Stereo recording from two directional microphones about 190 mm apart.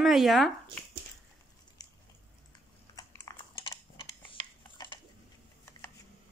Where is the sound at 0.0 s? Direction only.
Centre (ahead or behind).